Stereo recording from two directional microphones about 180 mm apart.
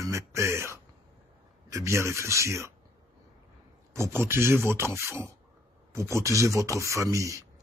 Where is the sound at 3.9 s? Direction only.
15° right (ahead or behind).